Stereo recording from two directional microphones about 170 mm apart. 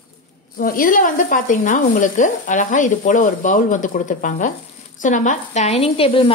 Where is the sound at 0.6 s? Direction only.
55° left (ahead or behind).